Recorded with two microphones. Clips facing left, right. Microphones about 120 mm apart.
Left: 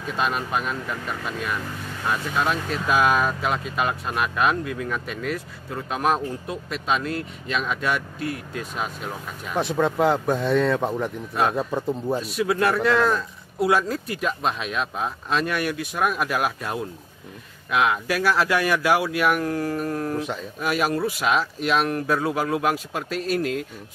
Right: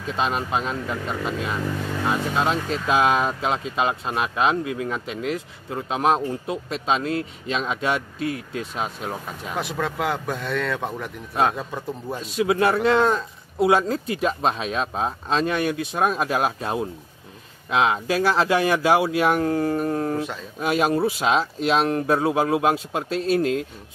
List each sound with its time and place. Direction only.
0.1 s speech: 25° right (ahead or behind)
9.6 s speech: 25° left (ahead or behind)
12.2 s speech: 25° right (ahead or behind)